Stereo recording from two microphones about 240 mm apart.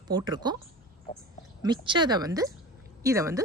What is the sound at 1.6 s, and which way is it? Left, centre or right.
Speech, centre.